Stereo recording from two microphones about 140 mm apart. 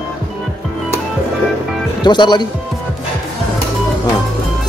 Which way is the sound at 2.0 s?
30° left (ahead or behind).